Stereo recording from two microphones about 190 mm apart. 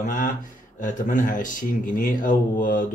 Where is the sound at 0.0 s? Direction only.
45° left (ahead or behind).